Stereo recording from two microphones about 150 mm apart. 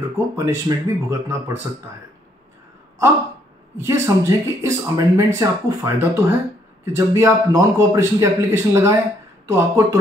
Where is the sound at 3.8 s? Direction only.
20° right (ahead or behind).